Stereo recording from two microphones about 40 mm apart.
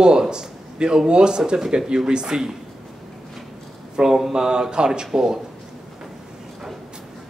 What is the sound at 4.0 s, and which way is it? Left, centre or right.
Speech, right.